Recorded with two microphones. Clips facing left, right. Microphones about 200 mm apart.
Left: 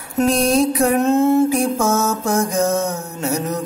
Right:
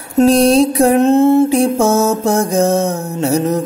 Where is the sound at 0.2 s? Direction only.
30° right (ahead or behind).